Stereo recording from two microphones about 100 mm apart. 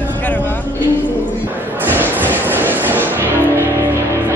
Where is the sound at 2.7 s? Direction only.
20° right (ahead or behind).